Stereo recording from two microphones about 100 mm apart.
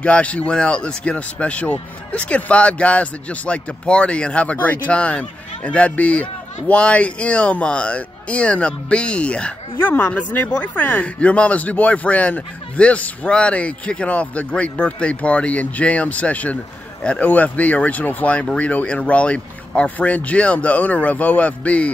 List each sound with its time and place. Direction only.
0.0 s speech: 10° left (ahead or behind)